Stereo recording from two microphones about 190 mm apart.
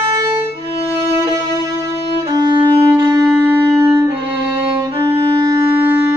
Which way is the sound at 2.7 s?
20° right (ahead or behind).